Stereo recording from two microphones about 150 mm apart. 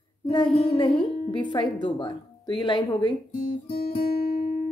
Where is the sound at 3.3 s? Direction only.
60° left (ahead or behind); by 4.3 s 85° left.